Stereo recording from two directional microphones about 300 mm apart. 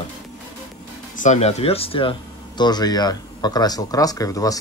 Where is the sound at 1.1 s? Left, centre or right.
Left.